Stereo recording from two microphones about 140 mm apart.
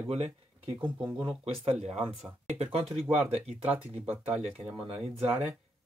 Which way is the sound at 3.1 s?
45° right (ahead or behind).